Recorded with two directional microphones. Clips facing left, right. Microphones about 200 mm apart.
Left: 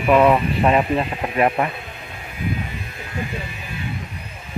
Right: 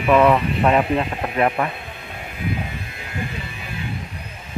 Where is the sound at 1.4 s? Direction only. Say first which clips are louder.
Left 1 dB; 20° left (ahead or behind).